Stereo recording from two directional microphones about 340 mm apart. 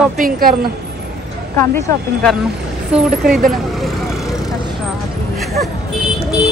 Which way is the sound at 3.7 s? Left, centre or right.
Centre.